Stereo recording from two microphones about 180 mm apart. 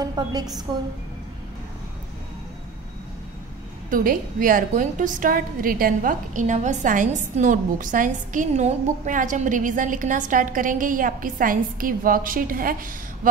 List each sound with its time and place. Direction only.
0.0 s a woman's voice: 20° right (ahead or behind)
3.9 s a woman's voice: 50° right (ahead or behind)